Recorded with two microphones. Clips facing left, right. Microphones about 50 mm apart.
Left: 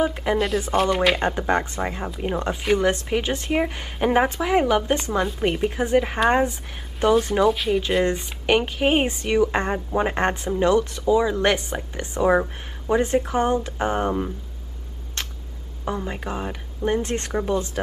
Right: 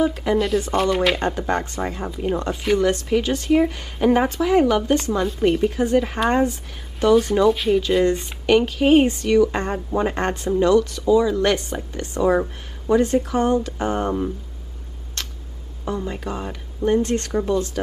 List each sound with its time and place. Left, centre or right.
0.0 s speech: centre
0.4 s speech: centre
1.2 s speech: centre
7.9 s speech: centre
15.2 s tick-tock: left
15.8 s speech: centre